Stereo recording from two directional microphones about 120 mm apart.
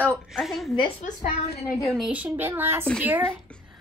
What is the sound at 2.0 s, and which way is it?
A child's voice, 10° right (ahead or behind).